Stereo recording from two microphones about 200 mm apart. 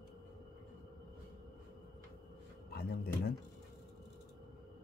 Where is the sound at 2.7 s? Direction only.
50° left (ahead or behind).